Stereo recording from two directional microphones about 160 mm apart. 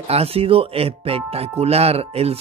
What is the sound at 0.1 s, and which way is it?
Speech, 40° right (ahead or behind).